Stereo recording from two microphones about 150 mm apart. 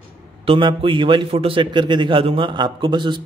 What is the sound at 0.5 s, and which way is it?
A man's voice, 35° right (ahead or behind).